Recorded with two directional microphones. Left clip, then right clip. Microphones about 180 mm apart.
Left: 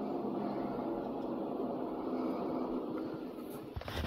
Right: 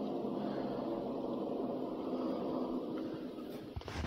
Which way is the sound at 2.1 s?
Centre (ahead or behind).